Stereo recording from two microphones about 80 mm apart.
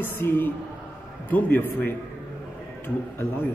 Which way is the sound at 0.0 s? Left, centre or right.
Left.